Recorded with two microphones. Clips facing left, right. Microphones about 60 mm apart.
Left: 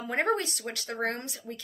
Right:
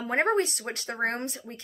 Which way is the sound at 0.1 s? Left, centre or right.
Right.